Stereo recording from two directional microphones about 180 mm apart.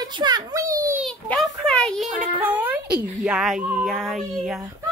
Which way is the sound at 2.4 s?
10° right (ahead or behind).